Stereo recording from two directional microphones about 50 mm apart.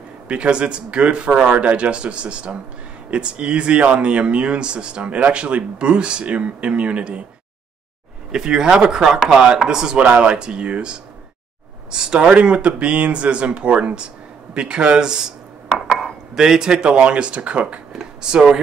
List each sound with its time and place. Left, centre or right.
0.3 s speech: right
8.3 s speech: centre
16.3 s speech: centre